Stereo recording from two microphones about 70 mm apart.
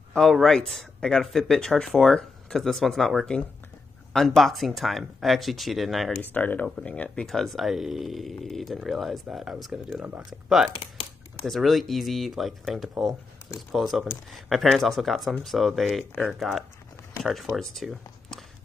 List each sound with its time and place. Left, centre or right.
0.1 s speech: centre
6.3 s speech: left
7.2 s speech: centre
11.4 s speech: centre